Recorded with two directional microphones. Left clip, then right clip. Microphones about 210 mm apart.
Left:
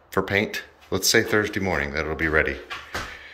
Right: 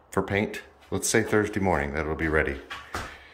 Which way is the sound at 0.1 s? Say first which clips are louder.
Left 4 dB; 15° right (ahead or behind).